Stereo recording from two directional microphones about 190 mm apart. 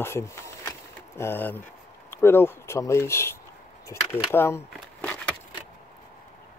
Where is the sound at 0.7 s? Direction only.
10° left (ahead or behind).